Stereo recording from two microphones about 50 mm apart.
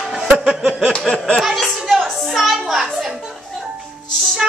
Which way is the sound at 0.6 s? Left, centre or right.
Centre.